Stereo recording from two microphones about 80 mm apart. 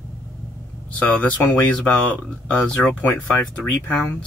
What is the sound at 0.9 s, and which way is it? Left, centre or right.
Speech, centre.